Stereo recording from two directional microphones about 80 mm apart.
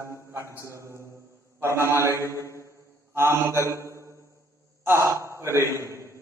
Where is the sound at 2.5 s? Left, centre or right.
Right.